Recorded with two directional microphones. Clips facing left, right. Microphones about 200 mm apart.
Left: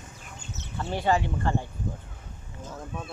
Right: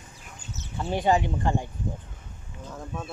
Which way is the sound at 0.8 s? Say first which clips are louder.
Right 2 dB; 15° right (ahead or behind).